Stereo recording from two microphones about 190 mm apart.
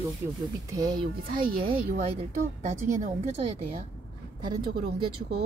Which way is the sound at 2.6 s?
45° right (ahead or behind).